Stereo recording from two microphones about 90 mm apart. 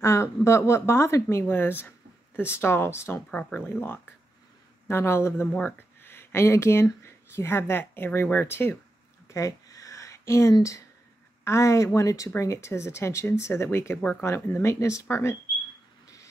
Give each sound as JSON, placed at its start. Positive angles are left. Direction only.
{"t": 0.0, "sound": "speech", "side_deg": 30}
{"t": 1.4, "sound": "speech", "side_deg": 20}
{"t": 3.3, "sound": "speech", "side_deg": 15}
{"t": 9.3, "sound": "a sound", "side_deg": 40}
{"t": 10.6, "sound": "speech", "side_deg": 35}